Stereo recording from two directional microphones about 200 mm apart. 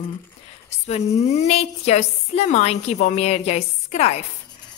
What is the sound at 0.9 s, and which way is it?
A woman's voice, 35° left (ahead or behind).